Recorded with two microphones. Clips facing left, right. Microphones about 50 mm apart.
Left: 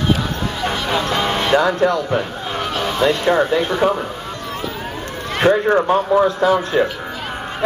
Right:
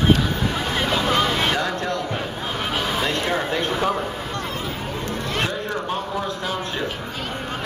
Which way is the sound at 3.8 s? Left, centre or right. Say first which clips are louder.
Left 6 dB; centre.